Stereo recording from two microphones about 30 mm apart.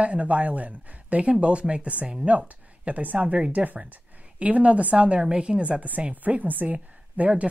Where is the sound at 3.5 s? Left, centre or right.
Right.